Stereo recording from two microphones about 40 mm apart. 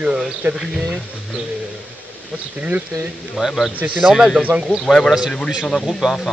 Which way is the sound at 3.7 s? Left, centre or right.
Right.